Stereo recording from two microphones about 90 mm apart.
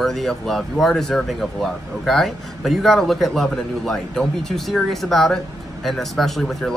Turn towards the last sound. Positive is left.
turn(degrees=0)  # may be behind; listen again after turning